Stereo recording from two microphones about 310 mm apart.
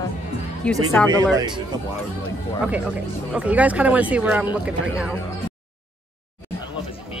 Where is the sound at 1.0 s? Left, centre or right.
Centre.